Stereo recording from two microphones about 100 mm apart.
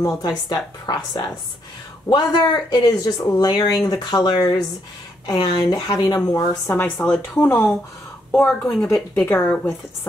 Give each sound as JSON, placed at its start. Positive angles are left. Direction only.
{"t": 0.0, "sound": "speech", "side_deg": 40}
{"t": 6.7, "sound": "speech", "side_deg": 20}
{"t": 8.5, "sound": "a woman's voice", "side_deg": 5}
{"t": 9.1, "sound": "a woman's voice", "side_deg": 15}